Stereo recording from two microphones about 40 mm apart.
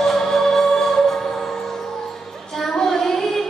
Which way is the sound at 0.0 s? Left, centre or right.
Centre.